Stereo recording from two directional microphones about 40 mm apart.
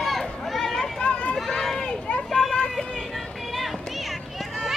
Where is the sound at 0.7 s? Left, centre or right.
Left.